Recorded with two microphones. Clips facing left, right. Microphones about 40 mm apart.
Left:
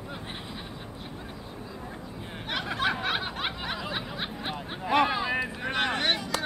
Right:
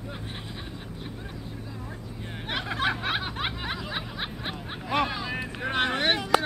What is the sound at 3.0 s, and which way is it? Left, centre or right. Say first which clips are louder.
Snicker: even; centre.